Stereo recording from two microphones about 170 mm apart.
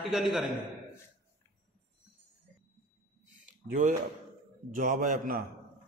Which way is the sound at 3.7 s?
45° right (ahead or behind).